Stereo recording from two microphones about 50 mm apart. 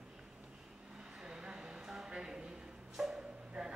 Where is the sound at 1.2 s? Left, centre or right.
Centre.